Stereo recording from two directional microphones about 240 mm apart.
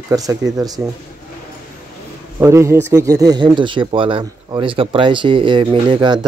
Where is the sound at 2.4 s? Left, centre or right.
Centre.